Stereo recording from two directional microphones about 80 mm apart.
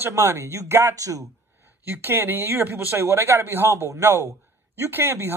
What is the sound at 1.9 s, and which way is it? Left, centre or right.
Speech, right.